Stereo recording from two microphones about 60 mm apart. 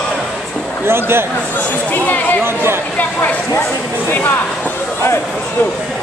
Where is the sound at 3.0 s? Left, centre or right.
Left.